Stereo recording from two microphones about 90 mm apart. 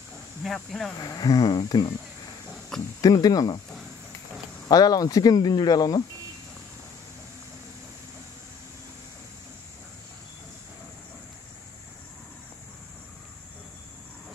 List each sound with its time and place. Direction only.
0.4 s speech: centre (ahead or behind)
0.9 s speech: 45° left (ahead or behind)
3.0 s speech: 45° left (ahead or behind)
4.6 s speech: 45° left (ahead or behind)